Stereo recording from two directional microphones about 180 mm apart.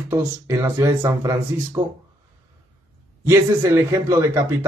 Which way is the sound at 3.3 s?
15° right (ahead or behind).